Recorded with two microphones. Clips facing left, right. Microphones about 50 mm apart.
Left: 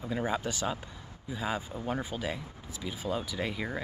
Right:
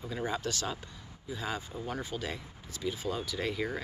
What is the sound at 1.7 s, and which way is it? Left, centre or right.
Speech, left.